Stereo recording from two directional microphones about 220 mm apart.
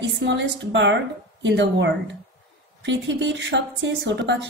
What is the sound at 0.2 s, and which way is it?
A woman's voice, 55° right (ahead or behind).